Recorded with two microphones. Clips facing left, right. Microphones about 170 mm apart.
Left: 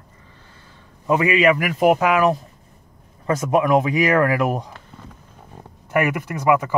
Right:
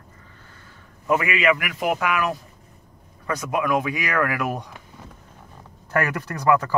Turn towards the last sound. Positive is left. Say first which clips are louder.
# left 2 dB
turn(degrees=15)  # may be behind; listen again after turning